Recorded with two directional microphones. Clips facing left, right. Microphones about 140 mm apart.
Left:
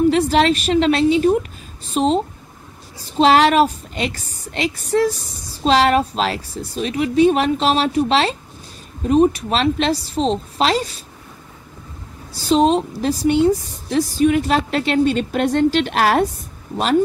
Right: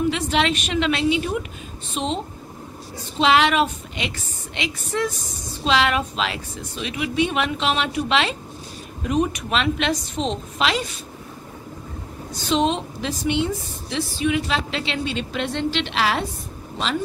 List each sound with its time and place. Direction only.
0.1 s a woman's voice: 40° left (ahead or behind)
12.4 s a woman's voice: 40° left (ahead or behind)